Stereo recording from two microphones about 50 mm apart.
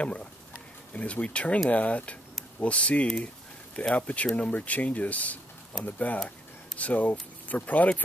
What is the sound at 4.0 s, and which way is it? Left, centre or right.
Speech, left.